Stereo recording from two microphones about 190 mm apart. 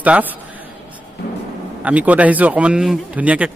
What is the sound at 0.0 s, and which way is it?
Speech, 10° right (ahead or behind).